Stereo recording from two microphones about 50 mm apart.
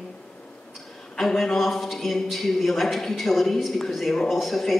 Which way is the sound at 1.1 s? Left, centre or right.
Centre.